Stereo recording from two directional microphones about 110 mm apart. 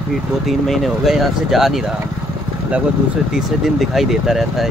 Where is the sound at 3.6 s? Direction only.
Centre (ahead or behind).